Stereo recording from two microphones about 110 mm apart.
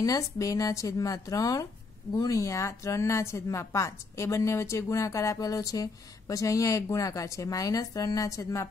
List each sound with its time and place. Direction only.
0.0 s a woman's voice: 35° left (ahead or behind)